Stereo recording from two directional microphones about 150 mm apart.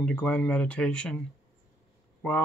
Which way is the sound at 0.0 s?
10° left (ahead or behind).